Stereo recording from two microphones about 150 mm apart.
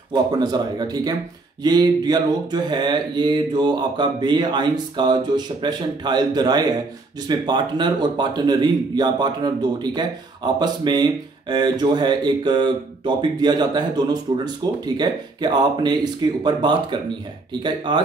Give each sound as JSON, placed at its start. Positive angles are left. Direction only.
{"t": 0.1, "sound": "a man's voice", "side_deg": -25}